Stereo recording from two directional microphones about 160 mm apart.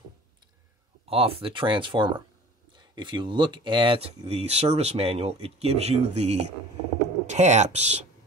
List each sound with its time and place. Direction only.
1.0 s speech: 35° right (ahead or behind)